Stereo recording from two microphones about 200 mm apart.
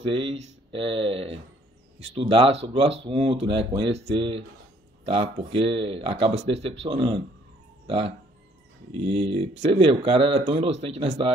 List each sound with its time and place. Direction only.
0.1 s speech: 30° right (ahead or behind)